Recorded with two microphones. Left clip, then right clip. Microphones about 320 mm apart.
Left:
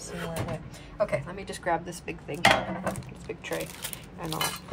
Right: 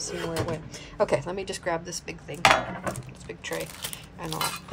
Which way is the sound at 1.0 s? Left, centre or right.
Centre.